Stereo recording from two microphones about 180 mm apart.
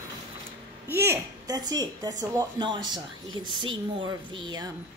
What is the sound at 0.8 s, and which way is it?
A woman's voice, 15° right (ahead or behind).